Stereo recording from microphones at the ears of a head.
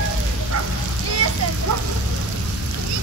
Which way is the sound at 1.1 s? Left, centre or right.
Right.